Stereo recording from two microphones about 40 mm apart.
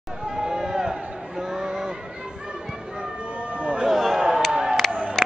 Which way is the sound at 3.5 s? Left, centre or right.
Right.